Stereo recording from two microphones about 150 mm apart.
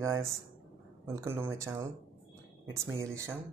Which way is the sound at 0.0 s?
20° right (ahead or behind).